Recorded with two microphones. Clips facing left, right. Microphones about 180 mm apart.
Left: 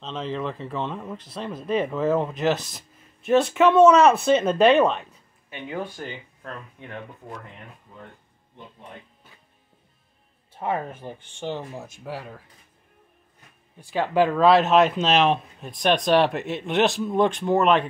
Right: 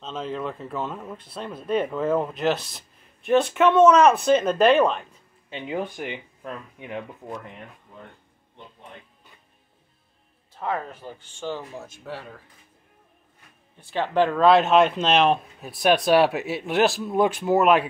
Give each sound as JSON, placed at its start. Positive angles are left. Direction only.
{"t": 0.0, "sound": "speech", "side_deg": 0}
{"t": 5.5, "sound": "speech", "side_deg": -20}
{"t": 10.5, "sound": "speech", "side_deg": 25}
{"t": 12.0, "sound": "speech", "side_deg": 5}
{"t": 13.7, "sound": "speech", "side_deg": 10}